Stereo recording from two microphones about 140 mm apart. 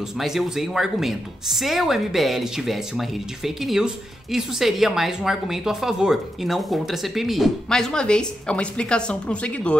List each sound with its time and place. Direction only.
0.2 s speech: centre (ahead or behind)